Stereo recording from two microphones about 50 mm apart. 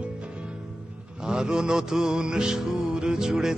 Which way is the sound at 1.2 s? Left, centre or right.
Centre.